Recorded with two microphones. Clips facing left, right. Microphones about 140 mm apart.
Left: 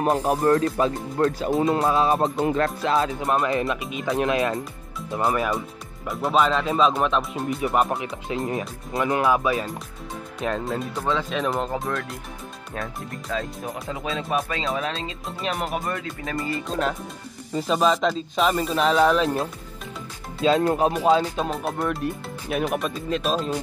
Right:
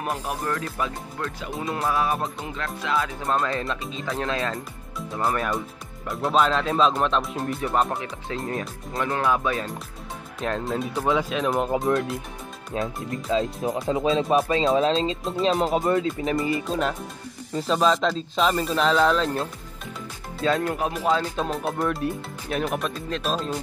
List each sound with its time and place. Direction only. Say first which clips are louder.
0.3 s speech: left 9 dB; 35° left (ahead or behind)
1.7 s speech: left 2 dB; 25° left (ahead or behind)
2.3 s music: left 10 dB; 50° left (ahead or behind)
3.2 s speech: left 3 dB; 20° left (ahead or behind)
5.2 s speech: left 2 dB; 5° left (ahead or behind)
12.7 s speech: right 5 dB; 20° right (ahead or behind)
16.6 s speech: even; centre (ahead or behind)
20.4 s speech: left 4 dB; 25° left (ahead or behind)
21.4 s speech: even; centre (ahead or behind)